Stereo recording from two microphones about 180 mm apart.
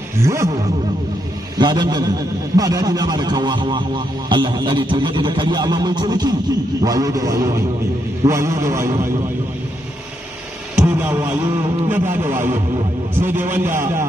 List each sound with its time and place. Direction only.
0.2 s a man's voice: 15° right (ahead or behind)
1.6 s a man's voice: 25° right (ahead or behind)
10.8 s a man's voice: 10° right (ahead or behind)